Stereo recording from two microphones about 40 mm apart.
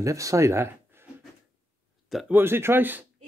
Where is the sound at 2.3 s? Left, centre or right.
Right.